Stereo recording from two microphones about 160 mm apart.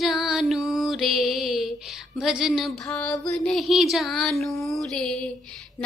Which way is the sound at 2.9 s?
20° left (ahead or behind).